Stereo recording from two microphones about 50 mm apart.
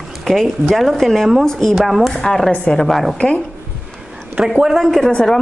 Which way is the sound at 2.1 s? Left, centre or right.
Centre.